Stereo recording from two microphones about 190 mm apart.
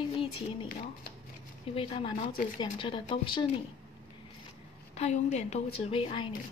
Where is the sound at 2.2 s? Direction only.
50° left (ahead or behind).